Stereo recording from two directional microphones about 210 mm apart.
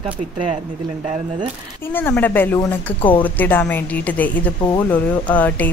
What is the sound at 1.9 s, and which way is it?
Speech, 10° left (ahead or behind).